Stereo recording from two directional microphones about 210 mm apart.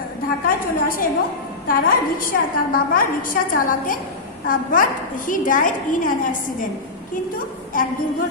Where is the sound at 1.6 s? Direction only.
40° left (ahead or behind).